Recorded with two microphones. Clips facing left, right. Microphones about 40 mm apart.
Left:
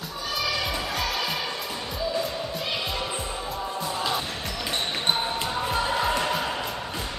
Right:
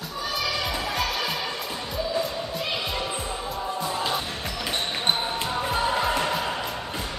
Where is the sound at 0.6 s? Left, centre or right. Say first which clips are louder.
Right 1 dB; centre.